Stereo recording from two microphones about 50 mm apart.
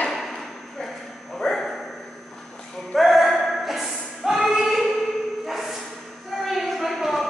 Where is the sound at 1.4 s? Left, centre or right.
Centre.